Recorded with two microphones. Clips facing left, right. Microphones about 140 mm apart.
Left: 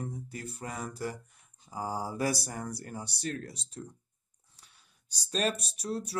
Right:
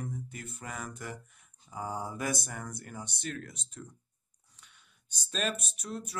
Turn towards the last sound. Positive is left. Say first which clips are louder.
# left 5 dB
turn(degrees=35)  # may be behind; listen again after turning